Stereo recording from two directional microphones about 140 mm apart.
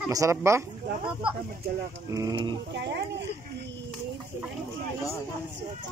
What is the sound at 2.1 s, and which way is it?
Speech, 25° right (ahead or behind).